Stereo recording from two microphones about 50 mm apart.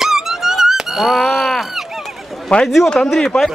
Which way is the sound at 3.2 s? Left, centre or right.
Centre.